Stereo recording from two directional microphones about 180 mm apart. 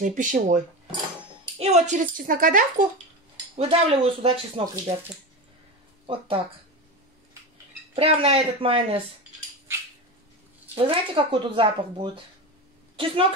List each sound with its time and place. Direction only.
0.0 s speech: 45° right (ahead or behind)
1.6 s speech: 40° right (ahead or behind)
3.5 s speech: 35° right (ahead or behind)
6.0 s speech: 30° right (ahead or behind)
7.9 s speech: 30° right (ahead or behind)
10.7 s a woman's voice: 30° right (ahead or behind)